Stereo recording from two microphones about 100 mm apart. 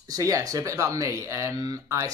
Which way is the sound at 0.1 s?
35° right (ahead or behind).